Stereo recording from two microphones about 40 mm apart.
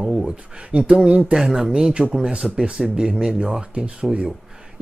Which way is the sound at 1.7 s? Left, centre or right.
Centre.